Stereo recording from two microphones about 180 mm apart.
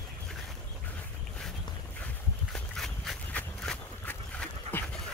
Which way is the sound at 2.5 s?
5° left (ahead or behind).